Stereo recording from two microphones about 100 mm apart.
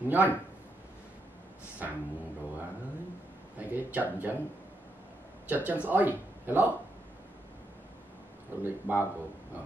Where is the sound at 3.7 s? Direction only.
15° right (ahead or behind).